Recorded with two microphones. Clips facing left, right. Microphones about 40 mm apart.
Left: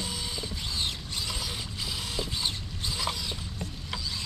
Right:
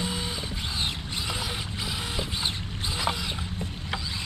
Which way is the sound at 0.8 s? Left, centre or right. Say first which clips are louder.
Right 2 dB; right.